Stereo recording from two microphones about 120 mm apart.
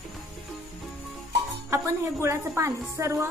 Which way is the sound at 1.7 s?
25° right (ahead or behind).